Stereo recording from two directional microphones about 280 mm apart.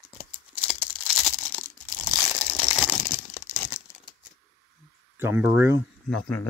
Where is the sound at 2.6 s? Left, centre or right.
Centre.